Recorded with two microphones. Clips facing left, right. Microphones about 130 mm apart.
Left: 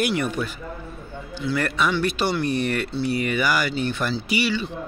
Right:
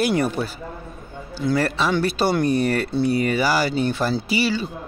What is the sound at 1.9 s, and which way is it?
A man's voice, 40° right (ahead or behind).